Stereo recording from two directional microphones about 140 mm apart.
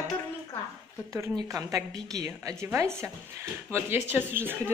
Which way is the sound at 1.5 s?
25° right (ahead or behind).